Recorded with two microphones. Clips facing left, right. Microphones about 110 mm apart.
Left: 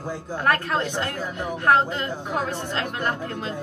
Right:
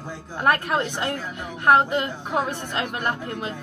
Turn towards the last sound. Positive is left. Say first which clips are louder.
# even
turn(degrees=-15)  # may be behind; listen again after turning